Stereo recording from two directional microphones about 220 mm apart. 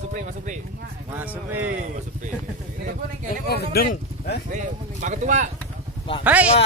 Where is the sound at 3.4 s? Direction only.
45° left (ahead or behind).